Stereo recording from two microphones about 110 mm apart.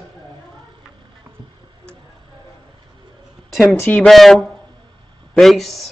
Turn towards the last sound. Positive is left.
turn(degrees=0)  # may be behind; listen again after turning